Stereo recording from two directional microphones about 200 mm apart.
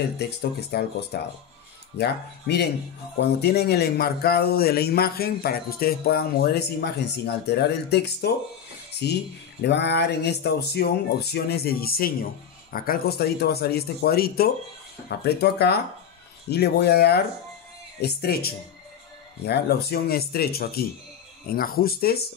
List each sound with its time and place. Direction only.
0.4 s a man's voice: 55° left (ahead or behind)